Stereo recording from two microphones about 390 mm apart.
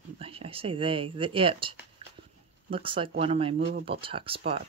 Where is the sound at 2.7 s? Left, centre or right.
Centre.